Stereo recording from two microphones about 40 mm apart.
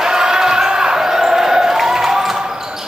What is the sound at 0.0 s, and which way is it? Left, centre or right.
Basketball bounce, centre.